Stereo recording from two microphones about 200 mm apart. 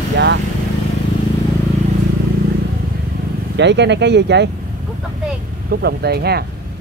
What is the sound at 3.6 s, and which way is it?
Speech, 60° right (ahead or behind).